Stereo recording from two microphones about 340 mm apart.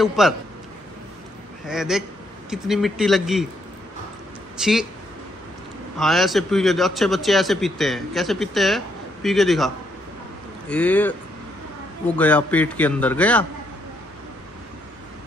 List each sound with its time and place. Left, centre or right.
0.0 s a man's voice: centre
1.7 s a man's voice: centre
4.6 s a man's voice: centre
5.9 s a man's voice: centre
10.7 s a man's voice: centre
12.2 s a man's voice: centre